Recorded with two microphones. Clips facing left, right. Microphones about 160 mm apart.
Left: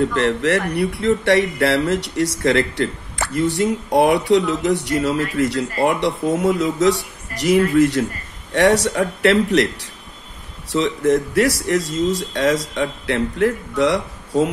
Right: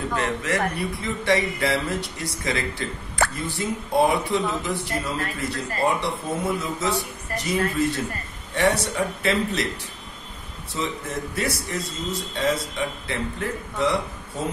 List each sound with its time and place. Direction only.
0.1 s speech: 75° left (ahead or behind)
10.7 s speech: 90° left